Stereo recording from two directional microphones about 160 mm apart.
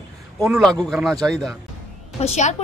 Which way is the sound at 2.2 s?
45° left (ahead or behind).